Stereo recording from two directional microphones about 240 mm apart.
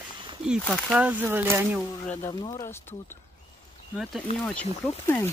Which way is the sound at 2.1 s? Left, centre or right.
Centre.